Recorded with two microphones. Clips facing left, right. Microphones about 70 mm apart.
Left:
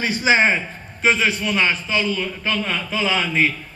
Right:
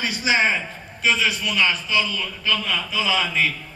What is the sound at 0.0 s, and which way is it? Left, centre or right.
A man's voice, left.